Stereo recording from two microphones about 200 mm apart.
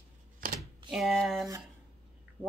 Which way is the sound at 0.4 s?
45° right (ahead or behind).